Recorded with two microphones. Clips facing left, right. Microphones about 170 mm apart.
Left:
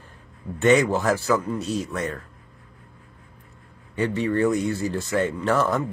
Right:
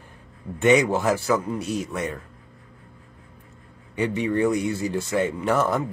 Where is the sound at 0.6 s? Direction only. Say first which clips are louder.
Even; 15° right (ahead or behind).